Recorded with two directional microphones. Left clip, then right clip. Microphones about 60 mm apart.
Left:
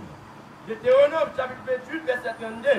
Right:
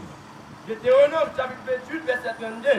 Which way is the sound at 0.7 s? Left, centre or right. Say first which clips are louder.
Right 1 dB; centre.